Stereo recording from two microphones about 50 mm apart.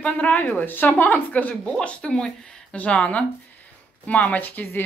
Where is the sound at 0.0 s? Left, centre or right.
Left.